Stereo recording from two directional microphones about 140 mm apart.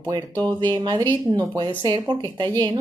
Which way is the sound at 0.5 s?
30° right (ahead or behind).